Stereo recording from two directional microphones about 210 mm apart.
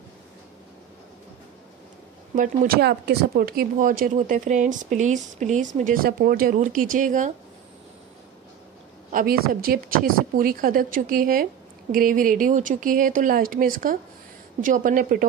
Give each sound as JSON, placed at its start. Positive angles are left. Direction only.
{"t": 2.3, "sound": "speech", "side_deg": -40}
{"t": 9.1, "sound": "speech", "side_deg": -45}